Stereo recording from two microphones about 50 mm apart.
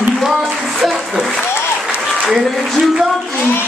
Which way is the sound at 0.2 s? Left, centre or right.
Centre.